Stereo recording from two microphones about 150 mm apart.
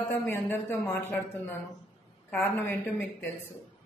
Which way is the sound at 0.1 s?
15° left (ahead or behind).